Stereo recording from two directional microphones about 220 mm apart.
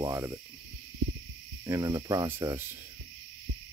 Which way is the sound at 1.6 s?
15° right (ahead or behind).